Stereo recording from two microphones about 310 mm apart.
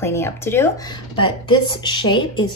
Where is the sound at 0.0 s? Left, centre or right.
Centre.